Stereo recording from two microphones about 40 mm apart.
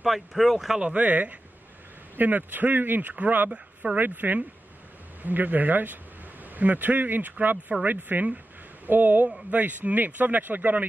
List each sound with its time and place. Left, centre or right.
0.0 s speech: centre
0.7 s speech: right
1.0 s speech: right
3.5 s speech: right
4.0 s speech: right
9.5 s speech: right